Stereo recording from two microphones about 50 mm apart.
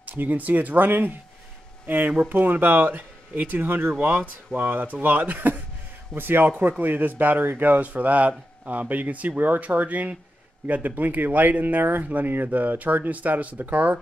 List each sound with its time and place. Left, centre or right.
0.0 s speech: right